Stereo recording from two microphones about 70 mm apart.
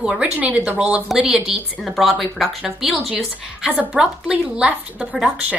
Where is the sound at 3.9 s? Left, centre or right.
Centre.